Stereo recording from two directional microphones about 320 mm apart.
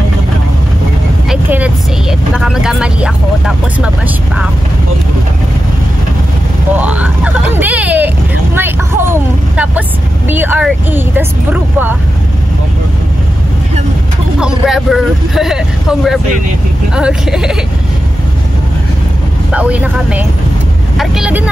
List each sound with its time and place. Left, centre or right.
1.3 s speech: centre
6.8 s speech: centre
14.4 s speech: centre
19.5 s speech: centre